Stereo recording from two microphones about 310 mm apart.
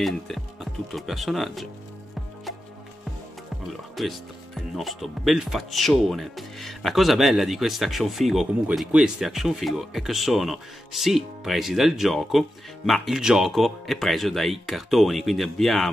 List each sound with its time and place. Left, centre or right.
0.3 s speech: centre
3.9 s speech: centre